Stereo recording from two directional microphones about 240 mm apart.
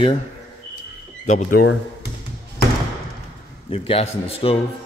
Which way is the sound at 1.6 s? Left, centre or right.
Left.